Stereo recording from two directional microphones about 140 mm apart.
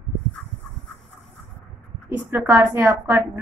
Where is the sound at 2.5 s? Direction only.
20° right (ahead or behind).